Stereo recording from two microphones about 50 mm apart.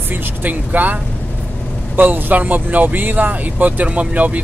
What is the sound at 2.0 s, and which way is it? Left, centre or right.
Speech, right.